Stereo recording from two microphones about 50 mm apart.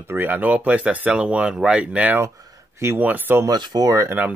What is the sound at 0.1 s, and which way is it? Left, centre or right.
Speech, right.